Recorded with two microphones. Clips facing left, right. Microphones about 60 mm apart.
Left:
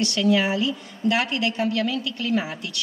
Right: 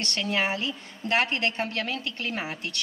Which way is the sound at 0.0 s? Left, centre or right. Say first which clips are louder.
Left 7 dB; right.